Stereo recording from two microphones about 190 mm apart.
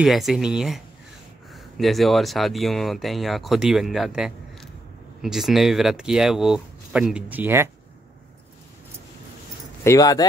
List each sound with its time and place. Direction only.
0.0 s speech: centre (ahead or behind)
9.8 s speech: 20° left (ahead or behind)